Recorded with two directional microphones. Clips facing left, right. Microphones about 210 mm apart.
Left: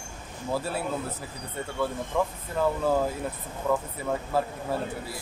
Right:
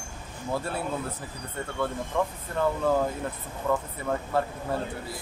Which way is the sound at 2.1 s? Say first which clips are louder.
Left 1 dB; 5° left (ahead or behind).